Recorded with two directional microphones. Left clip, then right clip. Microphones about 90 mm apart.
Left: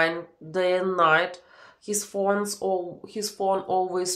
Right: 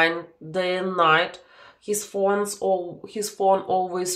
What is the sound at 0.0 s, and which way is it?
Speech, 25° right (ahead or behind).